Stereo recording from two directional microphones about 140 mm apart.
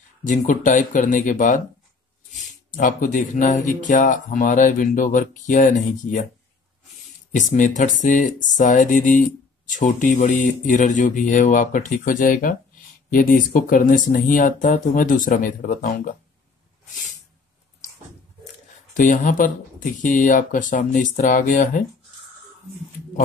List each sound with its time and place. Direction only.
0.2 s speech: 70° left (ahead or behind)
7.3 s speech: 65° left (ahead or behind)
18.9 s speech: 65° left (ahead or behind)